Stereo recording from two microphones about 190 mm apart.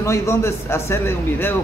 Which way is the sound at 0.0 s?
15° left (ahead or behind).